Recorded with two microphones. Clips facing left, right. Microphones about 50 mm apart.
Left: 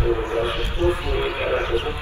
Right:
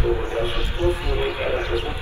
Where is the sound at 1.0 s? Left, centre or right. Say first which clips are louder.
Even; left.